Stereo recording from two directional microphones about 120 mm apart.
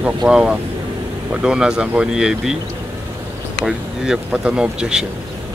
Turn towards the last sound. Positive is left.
turn(degrees=-5)  # may be behind; listen again after turning